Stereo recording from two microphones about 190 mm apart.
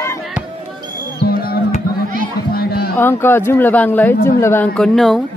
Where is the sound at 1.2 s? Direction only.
50° left (ahead or behind).